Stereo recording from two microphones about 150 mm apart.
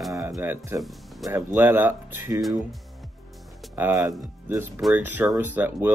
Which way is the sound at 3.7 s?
15° right (ahead or behind).